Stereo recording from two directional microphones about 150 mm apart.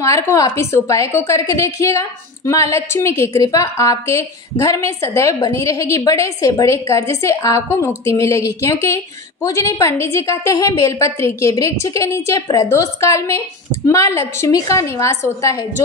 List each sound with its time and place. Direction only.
0.0 s a woman's voice: 20° left (ahead or behind)